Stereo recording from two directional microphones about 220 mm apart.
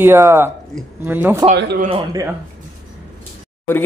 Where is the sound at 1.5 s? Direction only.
50° right (ahead or behind).